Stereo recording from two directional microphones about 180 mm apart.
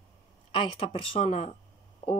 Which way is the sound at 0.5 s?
30° left (ahead or behind).